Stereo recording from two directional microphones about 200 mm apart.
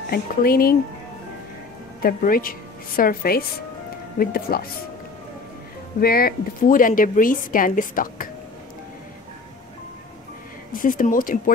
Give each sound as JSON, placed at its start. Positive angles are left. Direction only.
{"t": 0.1, "sound": "a woman's voice", "side_deg": 50}
{"t": 2.0, "sound": "a woman's voice", "side_deg": 45}
{"t": 5.9, "sound": "a woman's voice", "side_deg": 50}
{"t": 10.7, "sound": "a woman's voice", "side_deg": 45}